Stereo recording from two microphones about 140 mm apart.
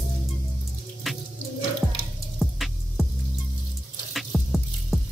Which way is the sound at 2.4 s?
Centre (ahead or behind).